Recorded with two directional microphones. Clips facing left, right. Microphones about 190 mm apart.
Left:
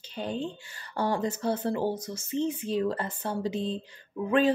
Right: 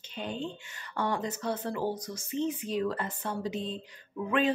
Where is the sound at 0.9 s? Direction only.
30° left (ahead or behind).